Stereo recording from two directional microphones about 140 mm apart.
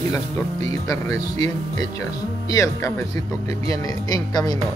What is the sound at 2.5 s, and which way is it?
Speech, 25° left (ahead or behind).